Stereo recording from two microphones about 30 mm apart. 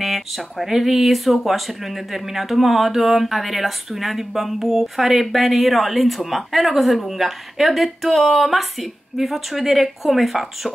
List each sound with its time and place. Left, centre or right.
0.0 s speech: centre